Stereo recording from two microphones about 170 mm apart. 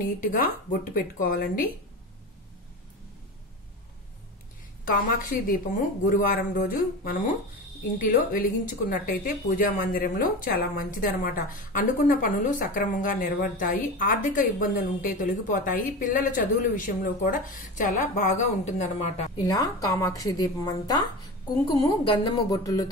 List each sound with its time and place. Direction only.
0.0 s speech: 55° left (ahead or behind)
4.8 s speech: 55° left (ahead or behind)
19.3 s a woman's voice: 20° left (ahead or behind)